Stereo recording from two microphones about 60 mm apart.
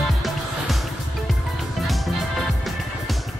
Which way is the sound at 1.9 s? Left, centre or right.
Centre.